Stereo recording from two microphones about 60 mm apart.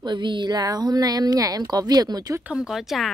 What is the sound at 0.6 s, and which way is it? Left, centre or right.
Speech, right.